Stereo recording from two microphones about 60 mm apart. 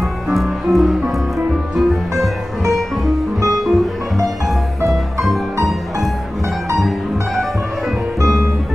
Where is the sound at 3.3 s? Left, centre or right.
Right.